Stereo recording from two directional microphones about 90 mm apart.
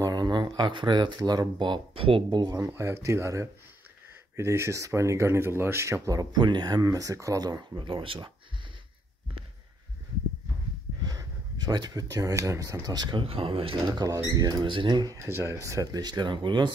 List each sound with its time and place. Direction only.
0.0 s speech: 45° right (ahead or behind); by 2.2 s 80° right
2.3 s speech: 50° right (ahead or behind)
2.6 s speech: 30° right (ahead or behind)
6.3 s speech: 55° right (ahead or behind)
7.9 s speech: 75° right (ahead or behind)
11.0 s speech: 45° right (ahead or behind)
13.2 s speech: 90° right
13.9 s speech: 40° right (ahead or behind)
14.7 s speech: 65° right (ahead or behind)
15.1 s speech: 30° right (ahead or behind); by 16.7 s 65° right (ahead or behind)